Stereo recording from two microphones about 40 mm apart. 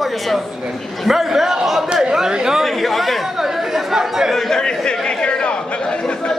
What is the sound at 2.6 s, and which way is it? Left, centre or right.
Speech, centre.